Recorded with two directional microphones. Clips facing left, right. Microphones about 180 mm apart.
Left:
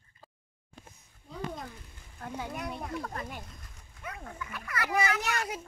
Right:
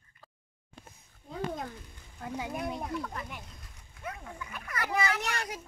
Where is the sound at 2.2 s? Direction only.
10° right (ahead or behind).